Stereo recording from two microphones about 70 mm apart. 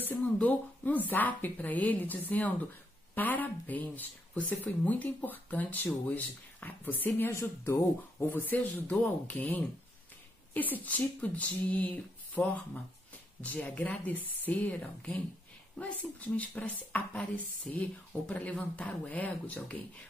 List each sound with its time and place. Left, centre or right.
0.0 s speech: left